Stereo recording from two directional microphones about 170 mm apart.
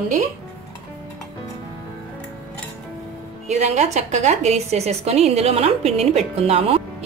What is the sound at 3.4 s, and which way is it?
A woman's voice, 40° right (ahead or behind).